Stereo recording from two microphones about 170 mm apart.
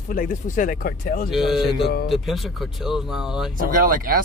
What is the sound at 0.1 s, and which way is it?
Speech, 55° left (ahead or behind).